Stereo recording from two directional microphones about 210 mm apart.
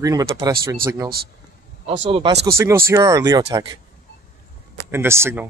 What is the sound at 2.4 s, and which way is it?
Speech, 15° right (ahead or behind).